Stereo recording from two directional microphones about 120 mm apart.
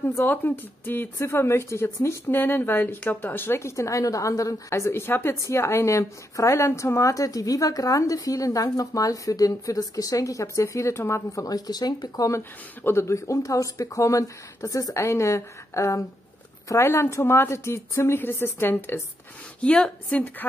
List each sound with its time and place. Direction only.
0.1 s speech: 20° left (ahead or behind)
19.6 s speech: 10° left (ahead or behind)